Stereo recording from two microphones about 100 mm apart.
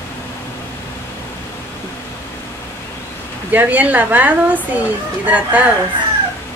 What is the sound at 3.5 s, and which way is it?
Speech, 15° right (ahead or behind).